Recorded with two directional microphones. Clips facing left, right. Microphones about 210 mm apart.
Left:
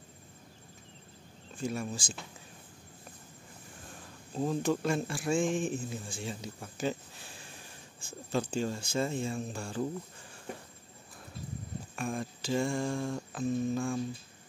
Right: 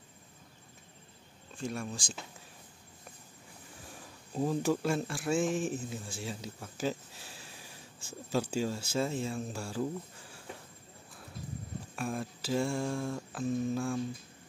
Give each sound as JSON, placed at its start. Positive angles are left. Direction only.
{"t": 1.6, "sound": "speech", "side_deg": 0}
{"t": 4.4, "sound": "speech", "side_deg": -5}
{"t": 11.9, "sound": "speech", "side_deg": -5}